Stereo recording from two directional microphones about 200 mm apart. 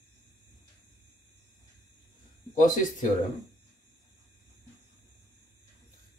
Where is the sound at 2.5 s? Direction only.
40° left (ahead or behind).